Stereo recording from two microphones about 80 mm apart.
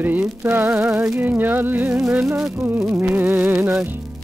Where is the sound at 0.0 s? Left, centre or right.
Right.